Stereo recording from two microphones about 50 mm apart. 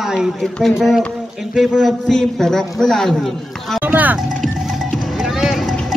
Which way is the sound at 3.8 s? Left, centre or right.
Right.